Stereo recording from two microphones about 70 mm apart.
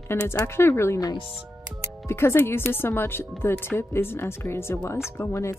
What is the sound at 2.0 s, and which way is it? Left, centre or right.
Speech, left.